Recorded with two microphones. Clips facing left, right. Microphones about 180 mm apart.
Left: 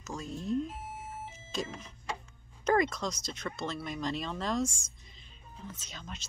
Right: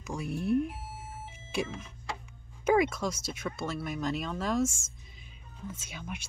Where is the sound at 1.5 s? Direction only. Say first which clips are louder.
Right 4 dB; 10° right (ahead or behind).